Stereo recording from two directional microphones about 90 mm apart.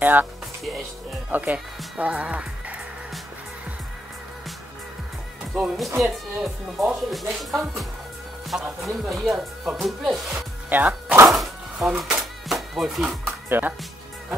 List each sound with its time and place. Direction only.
0.0 s speech: 20° right (ahead or behind)
1.3 s speech: 20° right (ahead or behind)
5.5 s speech: 5° right (ahead or behind)
10.7 s speech: 20° right (ahead or behind)
11.2 s music: centre (ahead or behind)
13.5 s speech: 20° right (ahead or behind)